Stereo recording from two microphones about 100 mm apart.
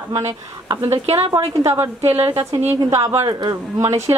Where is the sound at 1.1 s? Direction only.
90° right.